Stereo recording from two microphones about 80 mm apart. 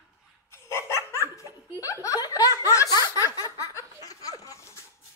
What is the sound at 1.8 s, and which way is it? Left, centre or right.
Laughter, left.